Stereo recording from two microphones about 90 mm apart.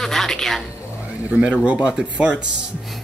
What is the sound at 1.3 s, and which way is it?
Speech, 15° right (ahead or behind).